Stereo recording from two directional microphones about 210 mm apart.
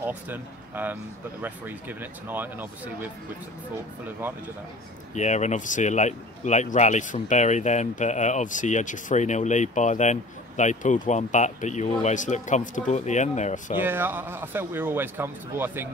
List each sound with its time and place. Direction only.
0.0 s a man's voice: 10° right (ahead or behind)
4.2 s a man's voice: 10° right (ahead or behind)
5.1 s speech: 35° left (ahead or behind)
13.7 s a man's voice: 10° right (ahead or behind)